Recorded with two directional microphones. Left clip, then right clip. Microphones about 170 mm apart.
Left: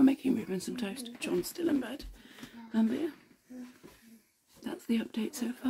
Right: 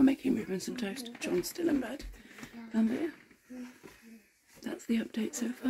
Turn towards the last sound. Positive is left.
turn(degrees=0)  # may be behind; listen again after turning